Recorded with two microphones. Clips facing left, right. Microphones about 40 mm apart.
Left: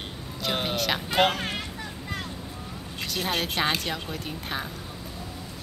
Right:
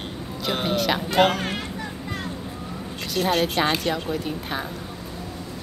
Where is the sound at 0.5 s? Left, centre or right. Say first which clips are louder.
Right 4 dB; centre.